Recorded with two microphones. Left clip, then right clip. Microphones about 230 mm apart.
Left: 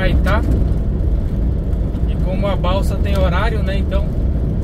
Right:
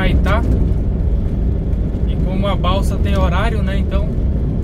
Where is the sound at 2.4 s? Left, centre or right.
Centre.